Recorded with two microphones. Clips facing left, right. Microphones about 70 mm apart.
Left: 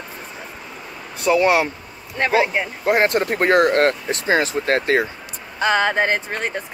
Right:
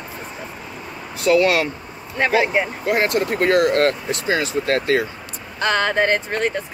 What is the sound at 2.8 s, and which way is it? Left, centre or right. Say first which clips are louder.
Speech: left 5 dB; left.